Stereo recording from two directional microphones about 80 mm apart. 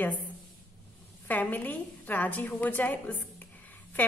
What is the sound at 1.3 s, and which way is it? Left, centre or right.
A woman's voice, left.